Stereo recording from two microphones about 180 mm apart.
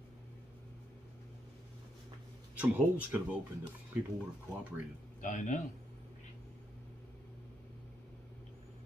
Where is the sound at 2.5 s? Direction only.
10° right (ahead or behind).